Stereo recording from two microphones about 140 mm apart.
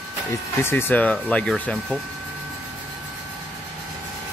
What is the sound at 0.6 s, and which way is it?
Speech, 15° left (ahead or behind).